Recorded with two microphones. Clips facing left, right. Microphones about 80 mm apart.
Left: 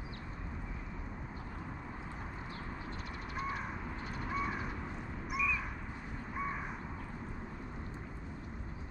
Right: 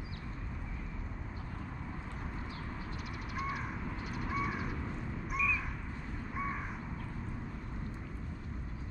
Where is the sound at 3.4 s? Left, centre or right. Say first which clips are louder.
Right 1 dB; left.